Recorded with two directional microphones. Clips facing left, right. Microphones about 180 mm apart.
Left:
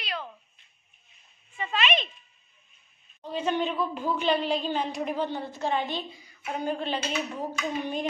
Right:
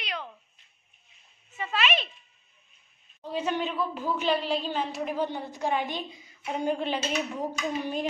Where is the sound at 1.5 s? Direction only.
5° right (ahead or behind).